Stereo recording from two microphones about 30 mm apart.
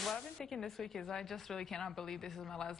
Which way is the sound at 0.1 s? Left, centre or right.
Centre.